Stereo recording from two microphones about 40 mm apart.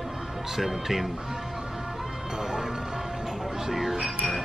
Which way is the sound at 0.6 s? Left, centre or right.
Centre.